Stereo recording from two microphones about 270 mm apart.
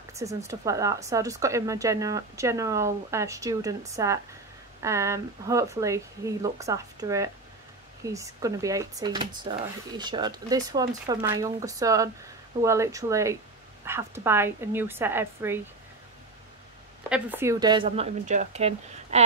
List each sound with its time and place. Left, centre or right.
0.1 s speech: centre
17.1 s speech: centre; by 19.2 s right